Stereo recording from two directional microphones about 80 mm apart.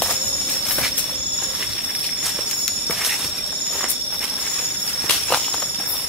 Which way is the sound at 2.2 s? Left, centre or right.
Centre.